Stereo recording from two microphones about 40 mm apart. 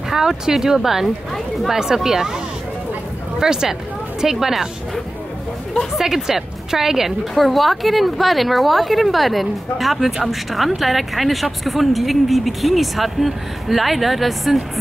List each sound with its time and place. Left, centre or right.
0.1 s a woman's voice: centre
3.3 s a woman's voice: centre
5.9 s a woman's voice: centre